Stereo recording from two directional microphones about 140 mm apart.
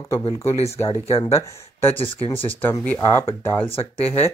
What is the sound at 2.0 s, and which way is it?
Speech, 40° left (ahead or behind).